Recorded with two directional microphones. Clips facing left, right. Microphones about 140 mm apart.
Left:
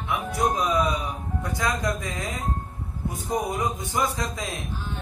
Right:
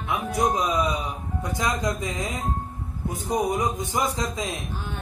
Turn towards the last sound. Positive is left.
turn(degrees=-20)  # may be behind; listen again after turning